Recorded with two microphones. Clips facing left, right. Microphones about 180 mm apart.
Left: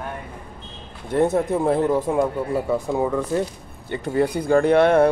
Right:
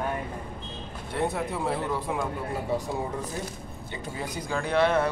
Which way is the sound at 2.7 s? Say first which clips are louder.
Left 8 dB; 60° left (ahead or behind).